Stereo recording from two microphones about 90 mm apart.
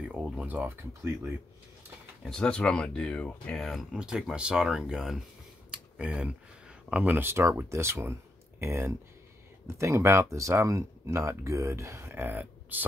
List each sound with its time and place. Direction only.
0.1 s speech: 15° right (ahead or behind)
2.2 s speech: 10° left (ahead or behind)
3.6 s speech: centre (ahead or behind)
5.7 s a sound: 10° right (ahead or behind)
6.9 s speech: 20° right (ahead or behind)